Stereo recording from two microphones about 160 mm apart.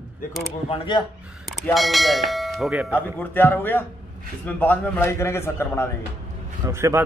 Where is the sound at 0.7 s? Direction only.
30° left (ahead or behind).